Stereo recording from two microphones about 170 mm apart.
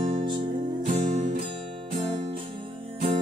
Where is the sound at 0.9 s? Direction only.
50° right (ahead or behind).